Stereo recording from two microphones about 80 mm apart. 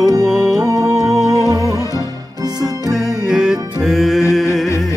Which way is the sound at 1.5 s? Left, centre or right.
Right.